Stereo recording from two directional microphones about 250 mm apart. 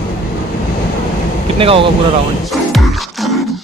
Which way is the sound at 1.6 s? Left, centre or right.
Right.